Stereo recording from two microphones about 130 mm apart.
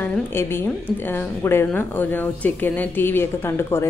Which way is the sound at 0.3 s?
20° left (ahead or behind).